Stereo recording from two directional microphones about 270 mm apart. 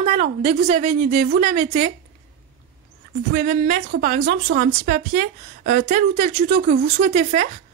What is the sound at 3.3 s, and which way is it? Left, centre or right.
Speech, right.